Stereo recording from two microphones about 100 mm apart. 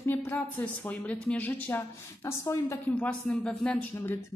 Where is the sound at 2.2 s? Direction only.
30° left (ahead or behind).